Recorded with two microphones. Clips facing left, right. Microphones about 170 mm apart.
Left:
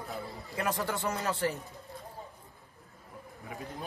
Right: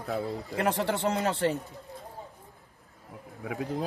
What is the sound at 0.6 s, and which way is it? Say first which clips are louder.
Speech: right 4 dB; 30° right (ahead or behind).